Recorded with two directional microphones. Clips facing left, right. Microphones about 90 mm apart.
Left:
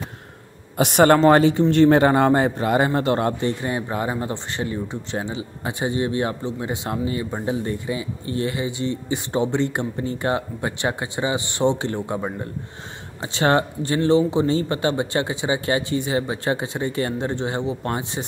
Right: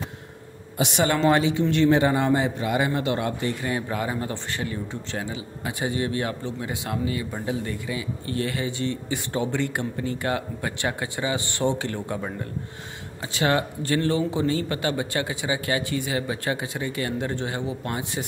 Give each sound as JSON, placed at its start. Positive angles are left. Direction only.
{"t": 0.7, "sound": "a man's voice", "side_deg": 50}
{"t": 3.3, "sound": "speech", "side_deg": 30}